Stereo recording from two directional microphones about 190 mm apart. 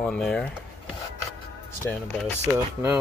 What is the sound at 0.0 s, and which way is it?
Speech, 5° left (ahead or behind).